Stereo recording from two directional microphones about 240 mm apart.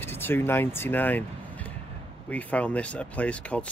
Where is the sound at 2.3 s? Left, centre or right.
Centre.